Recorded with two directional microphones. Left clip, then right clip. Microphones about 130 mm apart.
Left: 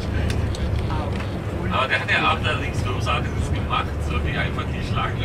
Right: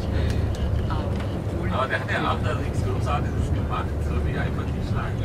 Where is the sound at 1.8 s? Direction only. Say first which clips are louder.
Left 5 dB; 15° left (ahead or behind).